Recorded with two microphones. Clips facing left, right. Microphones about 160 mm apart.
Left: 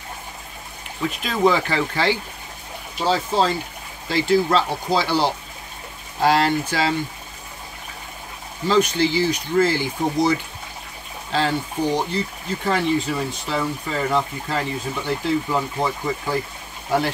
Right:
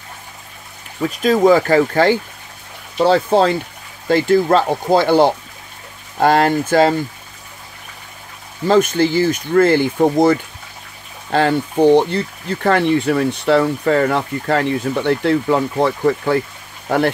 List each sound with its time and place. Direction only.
1.0 s speech: 40° right (ahead or behind)
3.0 s speech: 60° right (ahead or behind)
8.6 s speech: 50° right (ahead or behind); by 16.3 s 65° right (ahead or behind)